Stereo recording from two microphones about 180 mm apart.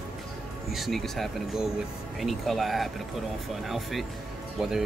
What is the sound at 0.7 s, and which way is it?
Speech, centre (ahead or behind).